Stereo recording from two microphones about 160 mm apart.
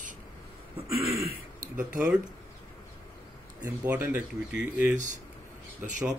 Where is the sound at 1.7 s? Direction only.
10° right (ahead or behind).